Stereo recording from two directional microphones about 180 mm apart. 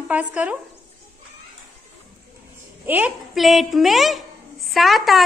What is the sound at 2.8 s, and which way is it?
A woman's voice, 10° right (ahead or behind).